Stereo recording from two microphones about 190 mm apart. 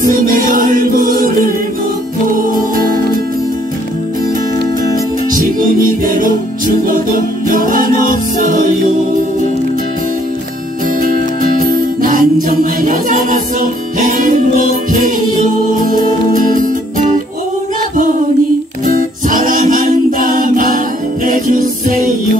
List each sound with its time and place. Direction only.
0.0 s music: 50° right (ahead or behind)
5.3 s music: 50° right (ahead or behind)
12.0 s music: 45° right (ahead or behind)
19.2 s music: 45° right (ahead or behind)